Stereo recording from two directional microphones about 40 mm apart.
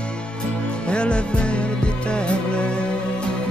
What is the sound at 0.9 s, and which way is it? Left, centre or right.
Music, left.